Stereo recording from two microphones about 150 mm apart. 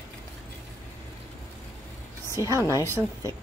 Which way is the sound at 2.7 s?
15° left (ahead or behind).